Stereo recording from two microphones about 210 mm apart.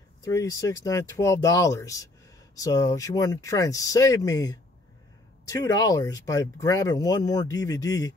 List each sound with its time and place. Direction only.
0.2 s speech: 15° left (ahead or behind)